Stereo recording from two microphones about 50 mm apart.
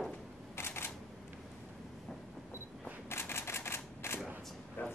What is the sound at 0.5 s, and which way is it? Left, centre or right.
Camera, left.